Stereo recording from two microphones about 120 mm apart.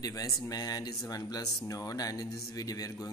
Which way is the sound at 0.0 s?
30° left (ahead or behind).